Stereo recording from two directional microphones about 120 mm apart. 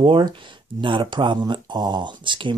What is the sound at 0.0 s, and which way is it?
Speech, 45° right (ahead or behind).